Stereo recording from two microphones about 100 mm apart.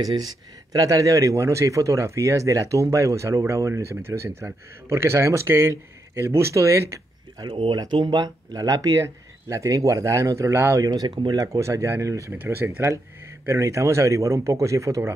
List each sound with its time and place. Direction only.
0.7 s speech: 35° right (ahead or behind)
7.3 s speech: 50° right (ahead or behind); by 10.8 s 25° right (ahead or behind)
10.8 s speech: 40° right (ahead or behind)
11.3 s speech: 30° right (ahead or behind)